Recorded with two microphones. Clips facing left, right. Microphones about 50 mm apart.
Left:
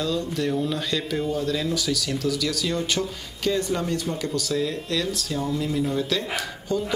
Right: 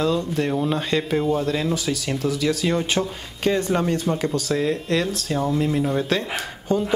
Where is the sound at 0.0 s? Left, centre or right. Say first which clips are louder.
Right 4 dB; right.